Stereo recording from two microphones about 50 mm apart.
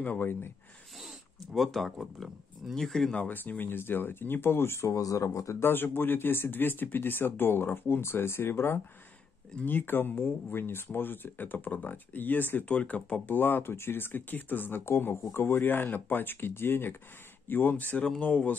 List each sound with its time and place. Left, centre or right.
0.0 s speech: left
0.9 s a sound: centre
2.1 s speech: centre
2.7 s speech: centre
3.2 s speech: left
5.6 s speech: left
9.7 s speech: left
13.3 s speech: left